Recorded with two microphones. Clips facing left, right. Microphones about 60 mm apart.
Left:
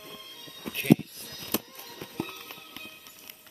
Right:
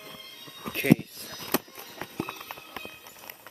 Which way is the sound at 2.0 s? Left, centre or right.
Right.